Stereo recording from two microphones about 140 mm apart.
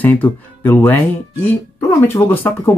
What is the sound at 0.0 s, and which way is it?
Speech, 15° left (ahead or behind).